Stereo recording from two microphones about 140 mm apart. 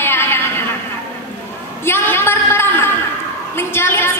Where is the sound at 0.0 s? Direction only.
15° left (ahead or behind).